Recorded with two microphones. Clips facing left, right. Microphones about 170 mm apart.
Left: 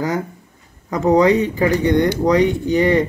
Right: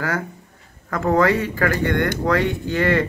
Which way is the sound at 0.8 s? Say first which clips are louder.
Left 4 dB; 15° left (ahead or behind).